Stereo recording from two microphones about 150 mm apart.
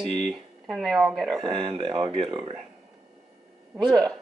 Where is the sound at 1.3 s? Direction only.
30° right (ahead or behind).